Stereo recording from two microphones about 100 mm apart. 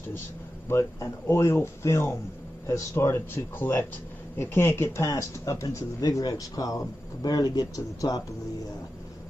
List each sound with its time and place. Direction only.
0.7 s speech: 25° left (ahead or behind)